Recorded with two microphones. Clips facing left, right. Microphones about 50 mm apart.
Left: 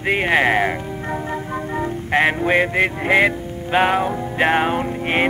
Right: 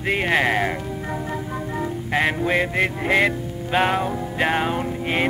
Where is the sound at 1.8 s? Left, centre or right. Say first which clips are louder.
Left 4 dB; centre.